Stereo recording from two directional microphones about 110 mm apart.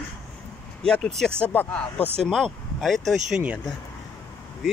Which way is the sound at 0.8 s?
5° left (ahead or behind).